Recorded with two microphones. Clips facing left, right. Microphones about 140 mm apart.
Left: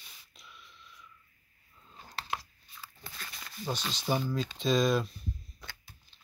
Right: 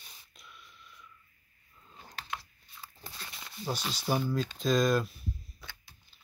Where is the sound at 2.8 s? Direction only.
20° right (ahead or behind).